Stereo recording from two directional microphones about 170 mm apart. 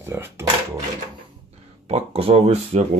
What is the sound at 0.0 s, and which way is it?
Speech, 15° right (ahead or behind).